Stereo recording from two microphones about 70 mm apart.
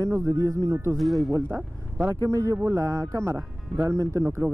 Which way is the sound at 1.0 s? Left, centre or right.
Centre.